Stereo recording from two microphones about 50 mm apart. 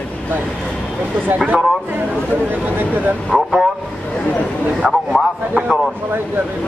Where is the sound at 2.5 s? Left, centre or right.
Right.